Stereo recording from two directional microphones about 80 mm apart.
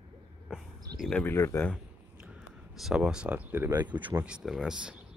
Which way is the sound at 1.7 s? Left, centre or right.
Centre.